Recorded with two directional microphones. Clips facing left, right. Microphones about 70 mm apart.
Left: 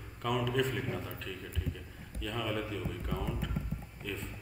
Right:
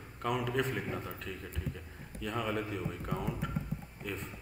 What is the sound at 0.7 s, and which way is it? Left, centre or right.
A man's voice, right.